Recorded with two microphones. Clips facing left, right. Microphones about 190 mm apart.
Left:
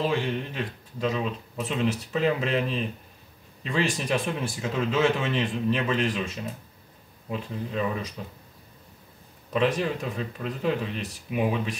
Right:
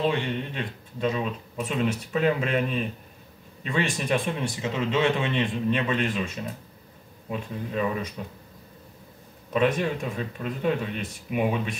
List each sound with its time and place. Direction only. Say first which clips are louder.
0.0 s speech: right 1 dB; 5° left (ahead or behind)
7.2 s speech: even; centre (ahead or behind)
9.5 s speech: right 1 dB; centre (ahead or behind)